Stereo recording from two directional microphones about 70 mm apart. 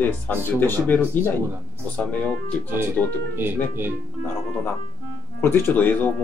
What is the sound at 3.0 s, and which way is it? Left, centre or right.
Speech, centre.